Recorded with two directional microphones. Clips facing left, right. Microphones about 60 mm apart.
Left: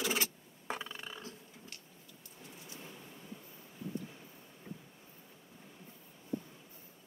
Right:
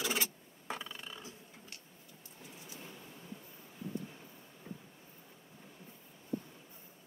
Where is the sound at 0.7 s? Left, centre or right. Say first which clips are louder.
Left 2 dB; centre.